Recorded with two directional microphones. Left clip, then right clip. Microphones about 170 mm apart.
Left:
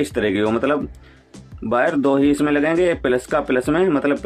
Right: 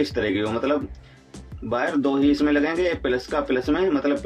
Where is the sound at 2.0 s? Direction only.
35° left (ahead or behind).